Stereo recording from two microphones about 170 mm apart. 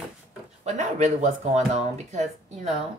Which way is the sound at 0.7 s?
45° right (ahead or behind).